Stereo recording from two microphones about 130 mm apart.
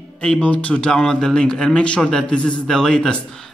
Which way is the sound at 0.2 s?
10° left (ahead or behind).